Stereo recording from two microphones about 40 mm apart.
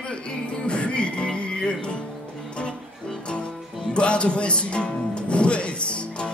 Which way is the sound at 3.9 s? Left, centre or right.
Left.